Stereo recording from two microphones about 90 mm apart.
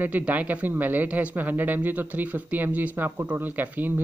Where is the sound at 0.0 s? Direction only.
20° right (ahead or behind).